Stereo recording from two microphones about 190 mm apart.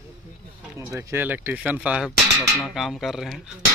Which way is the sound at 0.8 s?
15° right (ahead or behind).